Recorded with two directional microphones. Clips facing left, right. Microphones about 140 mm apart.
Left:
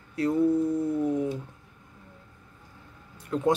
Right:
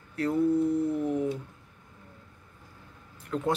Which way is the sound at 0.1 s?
15° left (ahead or behind).